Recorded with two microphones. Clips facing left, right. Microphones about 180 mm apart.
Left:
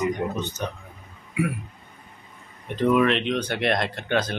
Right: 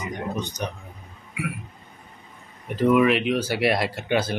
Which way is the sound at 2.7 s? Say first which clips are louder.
Right 2 dB; 5° right (ahead or behind).